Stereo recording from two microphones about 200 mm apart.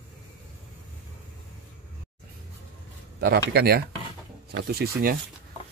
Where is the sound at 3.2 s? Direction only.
50° right (ahead or behind).